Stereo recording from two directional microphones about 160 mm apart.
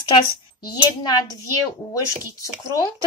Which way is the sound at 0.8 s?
25° left (ahead or behind).